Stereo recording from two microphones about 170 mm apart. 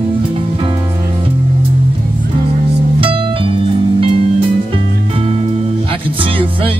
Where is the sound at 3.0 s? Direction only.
30° right (ahead or behind).